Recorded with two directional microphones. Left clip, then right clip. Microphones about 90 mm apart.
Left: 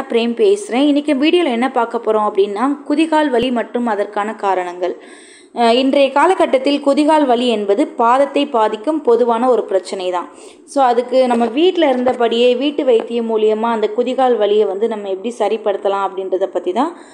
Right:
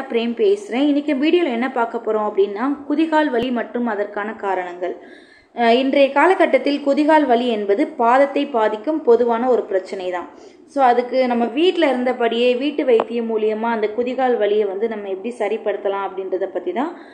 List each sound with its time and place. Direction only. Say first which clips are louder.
0.1 s a woman's voice: left 4 dB; 45° left (ahead or behind)
5.6 s a woman's voice: left 2 dB; 35° left (ahead or behind); by 12.0 s 55° left (ahead or behind)
12.0 s a woman's voice: left 4 dB; 40° left (ahead or behind)